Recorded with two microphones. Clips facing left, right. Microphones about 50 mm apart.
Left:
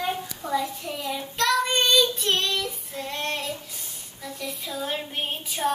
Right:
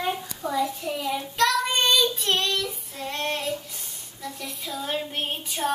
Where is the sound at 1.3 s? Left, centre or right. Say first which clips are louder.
Even; centre.